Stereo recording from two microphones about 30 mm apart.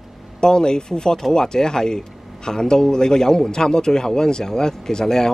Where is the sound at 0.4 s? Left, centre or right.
Left.